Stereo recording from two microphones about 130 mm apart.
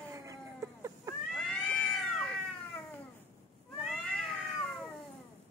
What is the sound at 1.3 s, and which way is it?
Cat, 5° left (ahead or behind).